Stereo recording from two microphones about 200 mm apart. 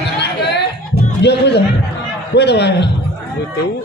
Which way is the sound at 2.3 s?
55° left (ahead or behind).